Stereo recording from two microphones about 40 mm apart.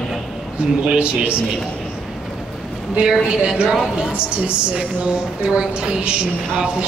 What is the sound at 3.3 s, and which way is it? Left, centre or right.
Speech, right.